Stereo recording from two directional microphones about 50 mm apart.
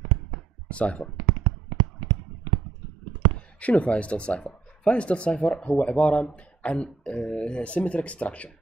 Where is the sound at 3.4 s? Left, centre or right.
Left.